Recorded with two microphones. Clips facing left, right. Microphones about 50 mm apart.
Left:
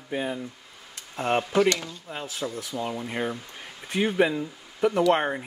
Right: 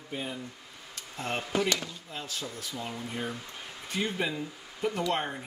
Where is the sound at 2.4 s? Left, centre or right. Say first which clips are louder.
Left 8 dB; left.